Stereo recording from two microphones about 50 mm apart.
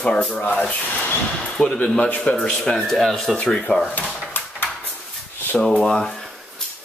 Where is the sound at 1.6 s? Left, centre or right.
Left.